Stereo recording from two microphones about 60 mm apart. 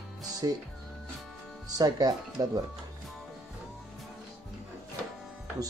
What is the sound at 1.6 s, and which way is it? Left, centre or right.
Speech, right.